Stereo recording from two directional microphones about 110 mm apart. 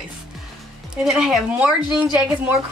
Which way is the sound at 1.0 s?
5° right (ahead or behind).